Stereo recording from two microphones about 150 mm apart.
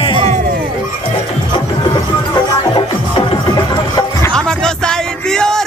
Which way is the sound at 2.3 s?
35° left (ahead or behind).